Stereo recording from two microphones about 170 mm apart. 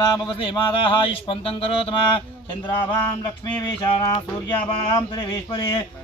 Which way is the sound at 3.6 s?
25° left (ahead or behind).